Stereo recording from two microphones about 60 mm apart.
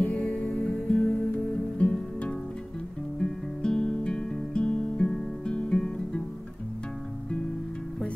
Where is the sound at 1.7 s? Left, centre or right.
Centre.